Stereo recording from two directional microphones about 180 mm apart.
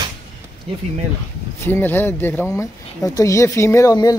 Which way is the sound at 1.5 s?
15° left (ahead or behind).